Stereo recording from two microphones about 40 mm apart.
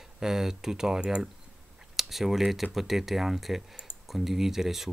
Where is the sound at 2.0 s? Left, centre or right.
Centre.